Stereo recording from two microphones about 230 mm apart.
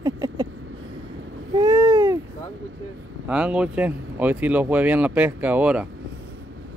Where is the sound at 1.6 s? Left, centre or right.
Centre.